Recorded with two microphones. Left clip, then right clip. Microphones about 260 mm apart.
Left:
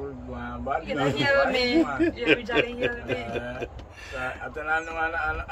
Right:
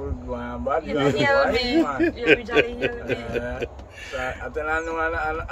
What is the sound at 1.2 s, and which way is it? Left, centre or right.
Speech, centre.